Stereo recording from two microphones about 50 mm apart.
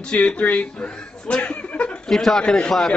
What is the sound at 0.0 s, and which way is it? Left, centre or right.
Speech, left.